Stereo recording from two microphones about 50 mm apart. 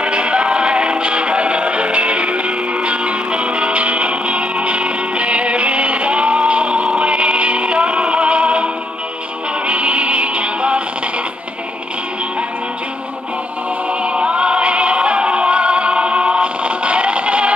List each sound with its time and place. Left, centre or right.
0.0 s music: right
9.7 s music: right
14.0 s music: right